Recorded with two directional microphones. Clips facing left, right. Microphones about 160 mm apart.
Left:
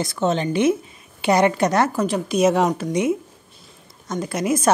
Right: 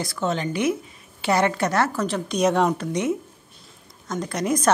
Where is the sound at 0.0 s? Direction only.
20° left (ahead or behind).